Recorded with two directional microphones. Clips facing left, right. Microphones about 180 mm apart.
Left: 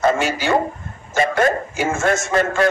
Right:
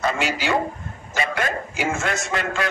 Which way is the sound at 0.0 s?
45° left (ahead or behind).